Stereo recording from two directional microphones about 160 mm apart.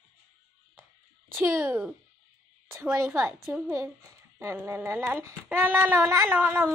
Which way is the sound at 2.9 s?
15° right (ahead or behind).